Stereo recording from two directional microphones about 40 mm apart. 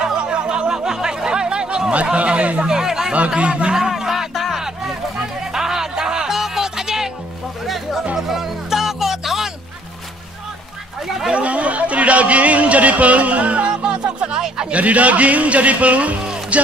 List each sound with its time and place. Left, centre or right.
0.2 s a sound: right
2.1 s a man's voice: right
2.6 s speech: centre
3.1 s speech: right
3.9 s music: centre
5.5 s music: centre
7.6 s music: centre
11.3 s speech: right
13.9 s music: right
14.7 s a man's voice: right
16.5 s music: right